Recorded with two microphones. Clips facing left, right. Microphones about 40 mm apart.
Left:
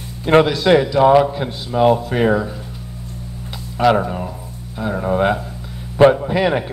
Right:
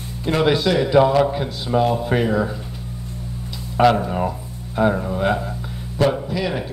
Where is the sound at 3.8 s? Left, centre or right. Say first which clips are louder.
Even; centre.